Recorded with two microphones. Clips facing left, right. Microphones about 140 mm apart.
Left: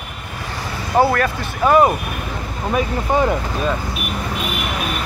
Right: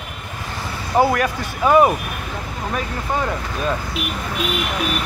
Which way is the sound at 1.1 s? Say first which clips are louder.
Left 1 dB; 10° right (ahead or behind).